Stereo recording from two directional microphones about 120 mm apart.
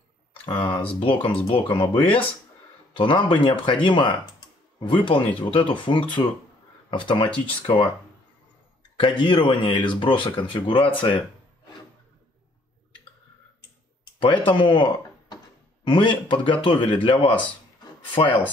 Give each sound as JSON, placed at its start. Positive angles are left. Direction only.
{"t": 0.5, "sound": "speech", "side_deg": 40}
{"t": 7.2, "sound": "speech", "side_deg": 10}
{"t": 7.6, "sound": "speech", "side_deg": 45}
{"t": 9.2, "sound": "speech", "side_deg": 45}
{"t": 14.2, "sound": "speech", "side_deg": 40}